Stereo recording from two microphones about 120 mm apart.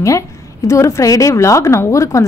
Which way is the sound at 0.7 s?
25° left (ahead or behind).